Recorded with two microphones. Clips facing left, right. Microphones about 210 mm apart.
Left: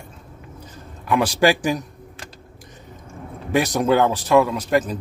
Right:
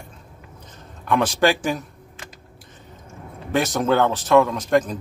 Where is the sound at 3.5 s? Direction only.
15° left (ahead or behind).